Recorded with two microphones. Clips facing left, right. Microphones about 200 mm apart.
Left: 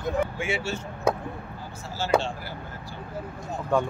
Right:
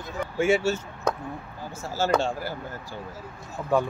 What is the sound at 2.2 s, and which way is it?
Speech, 45° right (ahead or behind).